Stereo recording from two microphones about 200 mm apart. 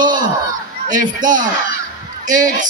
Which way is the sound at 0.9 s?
40° right (ahead or behind).